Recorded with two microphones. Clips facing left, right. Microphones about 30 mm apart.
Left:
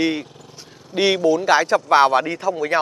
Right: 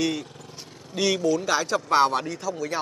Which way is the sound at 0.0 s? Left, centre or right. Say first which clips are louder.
Left 5 dB; left.